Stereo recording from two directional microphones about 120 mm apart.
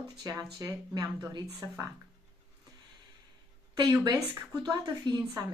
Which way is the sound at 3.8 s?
35° right (ahead or behind).